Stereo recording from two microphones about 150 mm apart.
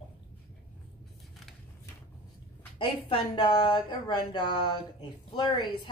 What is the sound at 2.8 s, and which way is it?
Speech, 30° left (ahead or behind).